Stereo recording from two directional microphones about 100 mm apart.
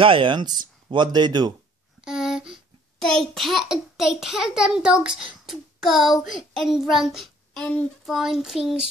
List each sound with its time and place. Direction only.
0.0 s speech: 60° right (ahead or behind)
2.0 s a sound: 5° right (ahead or behind)
3.0 s a child's voice: 5° left (ahead or behind)
5.0 s child singing: 5° right (ahead or behind)
8.0 s a child's voice: centre (ahead or behind)